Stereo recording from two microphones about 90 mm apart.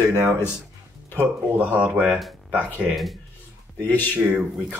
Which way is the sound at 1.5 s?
20° right (ahead or behind).